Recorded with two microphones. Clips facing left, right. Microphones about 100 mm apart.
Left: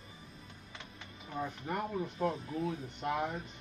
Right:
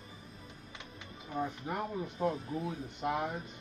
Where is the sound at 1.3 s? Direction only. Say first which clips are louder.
Right 1 dB; 10° right (ahead or behind).